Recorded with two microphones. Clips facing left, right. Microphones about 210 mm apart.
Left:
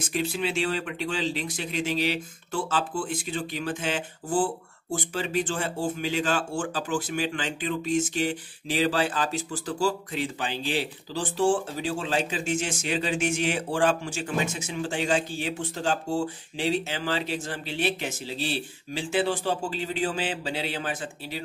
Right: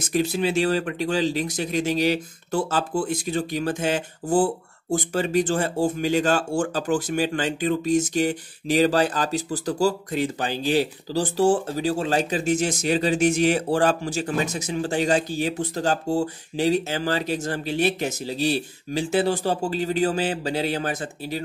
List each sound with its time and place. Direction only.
0.0 s speech: 40° right (ahead or behind)